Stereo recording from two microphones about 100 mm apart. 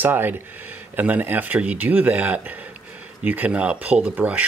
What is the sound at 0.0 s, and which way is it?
Speech, 20° right (ahead or behind).